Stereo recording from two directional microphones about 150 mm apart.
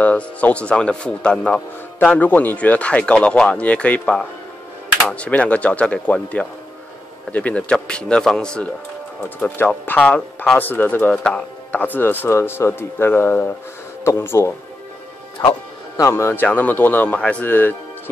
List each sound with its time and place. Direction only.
0.0 s a man's voice: 10° left (ahead or behind)